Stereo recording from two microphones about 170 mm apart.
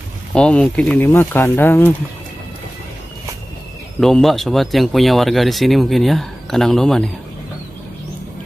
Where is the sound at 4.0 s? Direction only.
Centre (ahead or behind).